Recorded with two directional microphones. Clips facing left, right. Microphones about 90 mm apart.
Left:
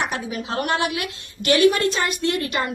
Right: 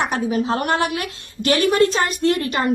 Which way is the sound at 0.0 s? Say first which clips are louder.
Right 6 dB; 35° right (ahead or behind).